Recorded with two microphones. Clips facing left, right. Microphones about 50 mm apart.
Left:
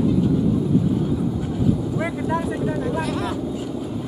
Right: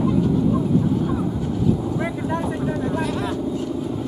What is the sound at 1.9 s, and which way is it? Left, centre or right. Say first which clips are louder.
Vehicle: left 1 dB; centre.